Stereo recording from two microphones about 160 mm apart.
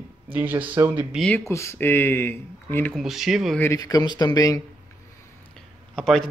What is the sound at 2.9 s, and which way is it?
Speech, centre (ahead or behind).